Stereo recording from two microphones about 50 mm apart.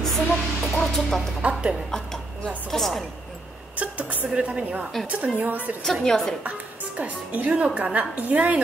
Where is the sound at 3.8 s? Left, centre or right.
Right.